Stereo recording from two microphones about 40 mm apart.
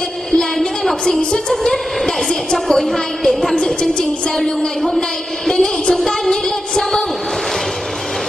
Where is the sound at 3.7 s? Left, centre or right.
Centre.